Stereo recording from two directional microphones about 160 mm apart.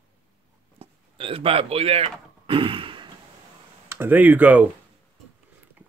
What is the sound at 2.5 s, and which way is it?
Sigh, 35° right (ahead or behind).